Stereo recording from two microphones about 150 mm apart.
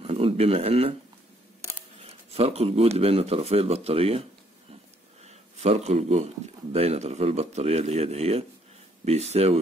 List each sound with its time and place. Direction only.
0.0 s speech: 40° right (ahead or behind)
2.0 s speech: 40° right (ahead or behind)
5.2 s speech: 45° right (ahead or behind)